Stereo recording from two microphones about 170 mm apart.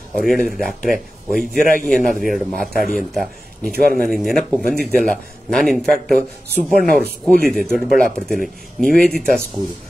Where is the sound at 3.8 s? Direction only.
55° right (ahead or behind).